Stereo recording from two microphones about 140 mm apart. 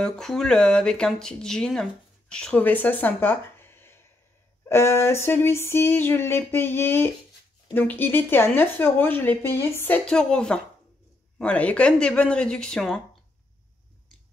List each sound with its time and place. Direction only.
0.0 s speech: 5° left (ahead or behind)